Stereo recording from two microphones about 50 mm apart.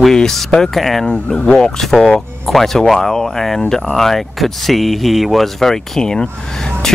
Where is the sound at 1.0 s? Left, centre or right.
Left.